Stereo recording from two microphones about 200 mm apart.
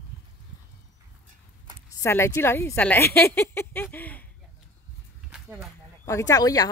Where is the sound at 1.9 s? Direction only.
15° left (ahead or behind).